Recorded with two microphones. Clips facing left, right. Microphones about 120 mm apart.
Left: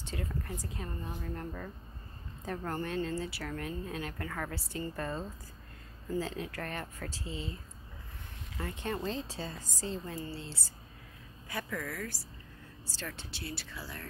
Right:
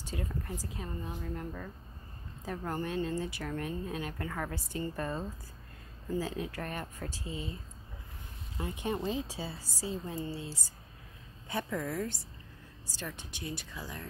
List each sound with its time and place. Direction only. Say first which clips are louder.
0.0 s a sound: right 1 dB; 15° right (ahead or behind)
0.5 s speech: right 1 dB; 15° right (ahead or behind)
6.1 s speech: right 1 dB; 15° right (ahead or behind)
8.5 s speech: right 2 dB; 15° right (ahead or behind)
11.4 s speech: right 3 dB; 25° right (ahead or behind)